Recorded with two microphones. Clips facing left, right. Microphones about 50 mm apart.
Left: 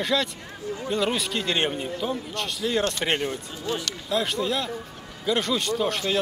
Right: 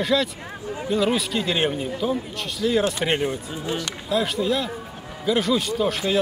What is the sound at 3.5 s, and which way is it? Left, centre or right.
Speech, centre.